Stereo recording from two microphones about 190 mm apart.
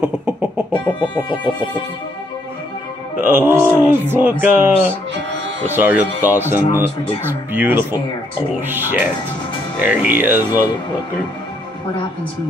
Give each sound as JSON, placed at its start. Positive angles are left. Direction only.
{"t": 1.3, "sound": "music", "side_deg": 25}
{"t": 3.2, "sound": "speech", "side_deg": -10}
{"t": 5.8, "sound": "speech", "side_deg": -10}